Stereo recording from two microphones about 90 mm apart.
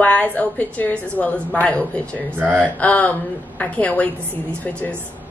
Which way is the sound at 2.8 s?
15° left (ahead or behind).